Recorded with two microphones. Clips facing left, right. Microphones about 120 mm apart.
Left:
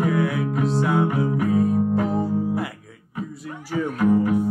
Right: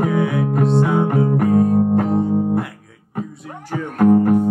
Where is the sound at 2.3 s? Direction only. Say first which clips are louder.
Right 5 dB; 55° right (ahead or behind).